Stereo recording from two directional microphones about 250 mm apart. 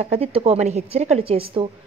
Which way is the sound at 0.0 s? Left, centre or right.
Right.